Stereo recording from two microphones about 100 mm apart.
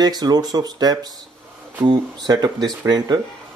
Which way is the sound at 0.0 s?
40° right (ahead or behind).